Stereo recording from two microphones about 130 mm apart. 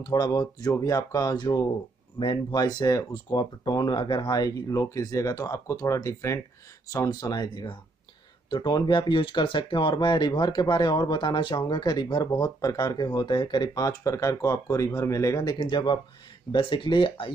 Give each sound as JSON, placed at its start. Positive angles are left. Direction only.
{"t": 0.0, "sound": "speech", "side_deg": 30}